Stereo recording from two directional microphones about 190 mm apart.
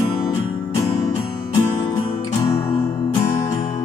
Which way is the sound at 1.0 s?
20° left (ahead or behind).